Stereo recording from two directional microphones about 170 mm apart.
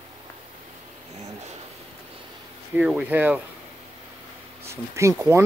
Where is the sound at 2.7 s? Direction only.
5° right (ahead or behind).